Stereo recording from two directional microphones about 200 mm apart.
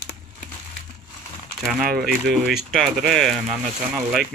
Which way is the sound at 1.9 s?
Centre (ahead or behind).